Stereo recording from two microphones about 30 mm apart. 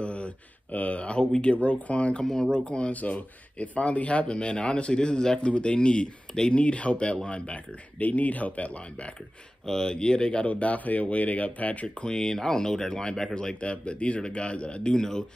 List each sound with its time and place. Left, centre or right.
0.0 s a sound: left
1.4 s speech: left
2.9 s speech: left
4.3 s speech: left
8.0 s speech: left
9.7 s speech: centre
9.9 s speech: left
10.4 s speech: left
12.1 s speech: left
13.6 s speech: left
15.0 s speech: left